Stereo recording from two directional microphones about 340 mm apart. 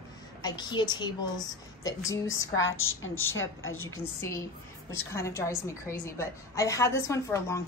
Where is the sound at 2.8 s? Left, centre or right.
Left.